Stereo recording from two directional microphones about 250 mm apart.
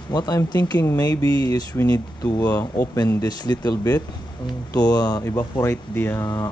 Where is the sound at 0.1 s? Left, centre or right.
Centre.